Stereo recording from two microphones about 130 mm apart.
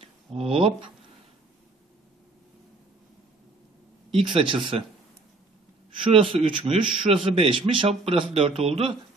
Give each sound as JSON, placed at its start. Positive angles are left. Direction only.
{"t": 0.0, "sound": "speech", "side_deg": -50}
{"t": 4.1, "sound": "speech", "side_deg": -40}
{"t": 6.1, "sound": "a man's voice", "side_deg": -40}